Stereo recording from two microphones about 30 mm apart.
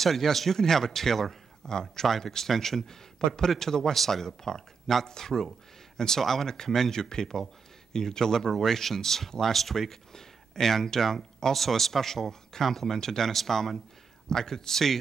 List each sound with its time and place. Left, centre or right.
0.0 s speech: centre
1.7 s speech: left
2.0 s speech: centre